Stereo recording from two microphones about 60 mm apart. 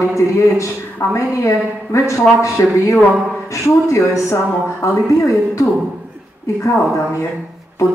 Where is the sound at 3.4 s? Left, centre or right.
Left.